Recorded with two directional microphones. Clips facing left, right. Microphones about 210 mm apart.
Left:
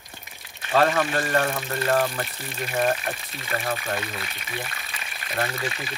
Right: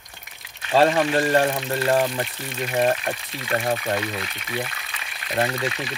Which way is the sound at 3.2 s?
Centre (ahead or behind).